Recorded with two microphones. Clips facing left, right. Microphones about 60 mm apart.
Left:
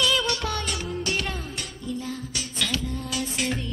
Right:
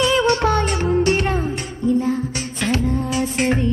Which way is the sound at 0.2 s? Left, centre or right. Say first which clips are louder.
Right 11 dB; right.